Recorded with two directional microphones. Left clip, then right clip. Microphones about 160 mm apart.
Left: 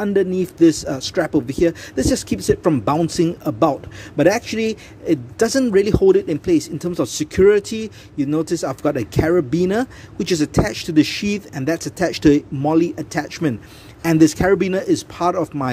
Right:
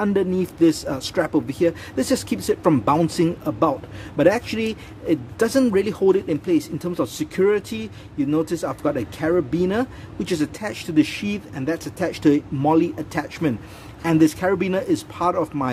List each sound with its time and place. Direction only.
0.0 s speech: 25° left (ahead or behind)